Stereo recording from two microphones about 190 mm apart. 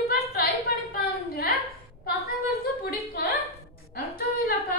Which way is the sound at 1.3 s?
55° left (ahead or behind).